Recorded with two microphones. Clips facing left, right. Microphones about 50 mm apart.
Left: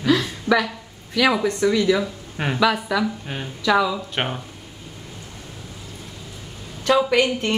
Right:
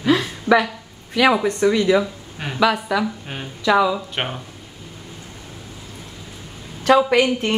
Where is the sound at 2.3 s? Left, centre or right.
Centre.